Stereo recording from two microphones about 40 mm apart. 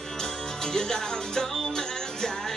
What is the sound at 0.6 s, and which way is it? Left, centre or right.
Music, centre.